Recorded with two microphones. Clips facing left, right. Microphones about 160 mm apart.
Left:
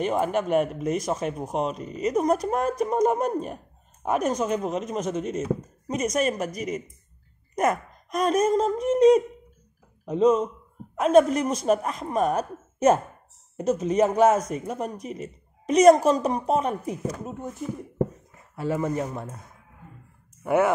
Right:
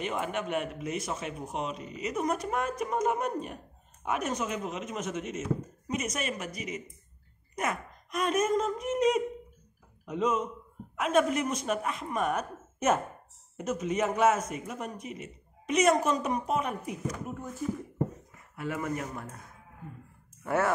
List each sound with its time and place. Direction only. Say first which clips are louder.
0.0 s speech: left 8 dB; 40° left (ahead or behind)
18.6 s speech: left 7 dB; 30° left (ahead or behind)
20.4 s speech: left 6 dB; 15° left (ahead or behind)